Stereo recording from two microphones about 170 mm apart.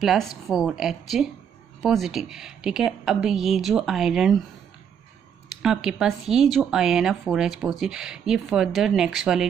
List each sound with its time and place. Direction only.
0.0 s speech: centre (ahead or behind)
5.6 s speech: 5° right (ahead or behind)